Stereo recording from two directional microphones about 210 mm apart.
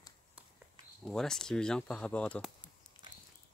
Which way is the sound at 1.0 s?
Centre (ahead or behind).